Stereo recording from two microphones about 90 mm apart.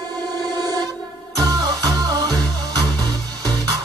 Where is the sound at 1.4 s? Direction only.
45° right (ahead or behind).